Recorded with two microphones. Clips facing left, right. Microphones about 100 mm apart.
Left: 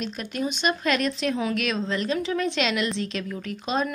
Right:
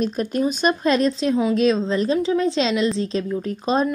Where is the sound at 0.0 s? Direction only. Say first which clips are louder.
Right 8 dB; 35° right (ahead or behind).